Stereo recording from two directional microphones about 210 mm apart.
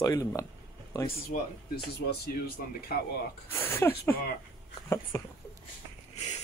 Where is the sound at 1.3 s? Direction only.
50° left (ahead or behind).